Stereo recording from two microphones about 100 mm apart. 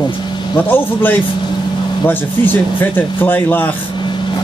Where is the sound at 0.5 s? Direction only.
20° left (ahead or behind).